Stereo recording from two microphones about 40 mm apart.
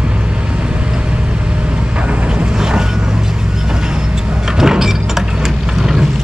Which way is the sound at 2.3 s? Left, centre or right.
Centre.